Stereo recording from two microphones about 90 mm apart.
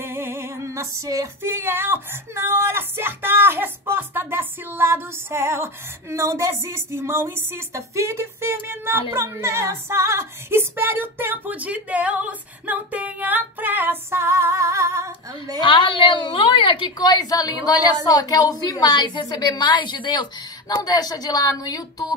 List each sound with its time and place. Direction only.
0.0 s female singing: 25° right (ahead or behind)
15.6 s a woman's voice: 65° left (ahead or behind)
20.8 s a woman's voice: 45° left (ahead or behind)